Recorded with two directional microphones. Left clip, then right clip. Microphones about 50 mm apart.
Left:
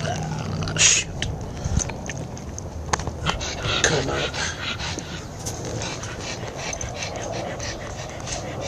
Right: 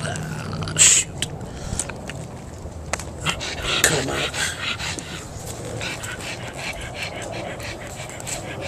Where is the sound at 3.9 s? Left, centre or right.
Right.